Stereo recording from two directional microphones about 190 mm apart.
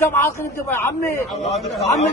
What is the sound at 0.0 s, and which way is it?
A man's voice, 15° left (ahead or behind).